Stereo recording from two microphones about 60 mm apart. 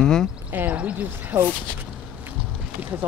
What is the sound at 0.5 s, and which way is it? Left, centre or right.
Speech, right.